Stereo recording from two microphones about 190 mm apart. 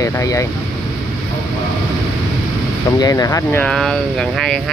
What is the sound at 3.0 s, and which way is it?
Speech, 20° left (ahead or behind).